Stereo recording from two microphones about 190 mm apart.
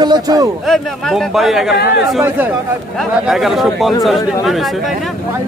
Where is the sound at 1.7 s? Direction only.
60° left (ahead or behind).